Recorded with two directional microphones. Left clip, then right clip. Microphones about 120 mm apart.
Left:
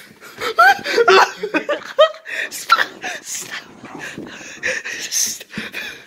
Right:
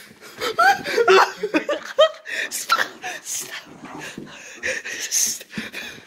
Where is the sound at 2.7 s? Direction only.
35° right (ahead or behind).